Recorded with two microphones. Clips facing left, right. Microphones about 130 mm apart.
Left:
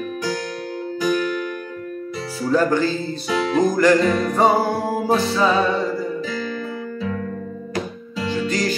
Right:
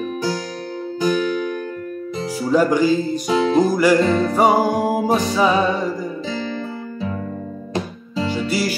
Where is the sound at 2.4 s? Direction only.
10° right (ahead or behind).